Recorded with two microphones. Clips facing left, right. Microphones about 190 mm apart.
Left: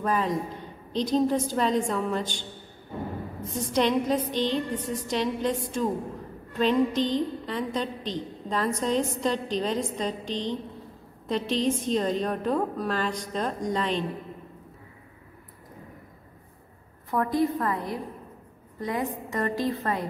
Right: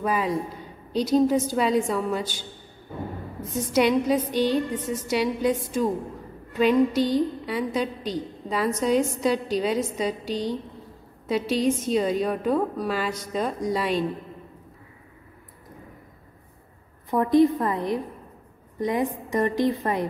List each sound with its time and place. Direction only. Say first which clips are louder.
0.0 s a woman's voice: right 1 dB; 5° right (ahead or behind)
3.7 s a woman's voice: right 3 dB; 10° right (ahead or behind)
17.1 s a woman's voice: right 6 dB; 20° right (ahead or behind)